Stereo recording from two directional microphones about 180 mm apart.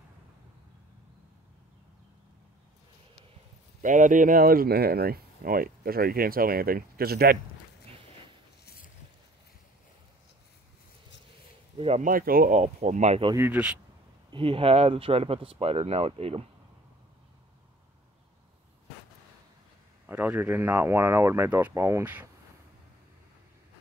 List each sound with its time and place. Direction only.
3.8 s speech: 45° right (ahead or behind)
11.8 s speech: 35° right (ahead or behind)
12.1 s speech: 50° right (ahead or behind)
13.4 s speech: 10° right (ahead or behind)
14.3 s speech: 30° right (ahead or behind)
20.1 s speech: 10° right (ahead or behind)